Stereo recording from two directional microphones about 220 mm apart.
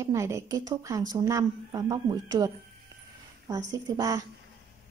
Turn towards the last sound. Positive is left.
turn(degrees=-15)  # may be behind; listen again after turning